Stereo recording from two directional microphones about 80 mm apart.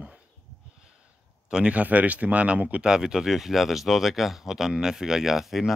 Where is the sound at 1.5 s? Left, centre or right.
Centre.